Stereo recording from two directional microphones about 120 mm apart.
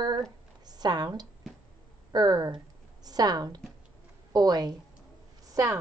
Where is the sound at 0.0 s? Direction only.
35° right (ahead or behind).